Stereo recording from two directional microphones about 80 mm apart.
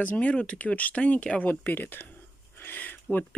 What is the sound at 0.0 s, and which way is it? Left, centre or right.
Speech, centre.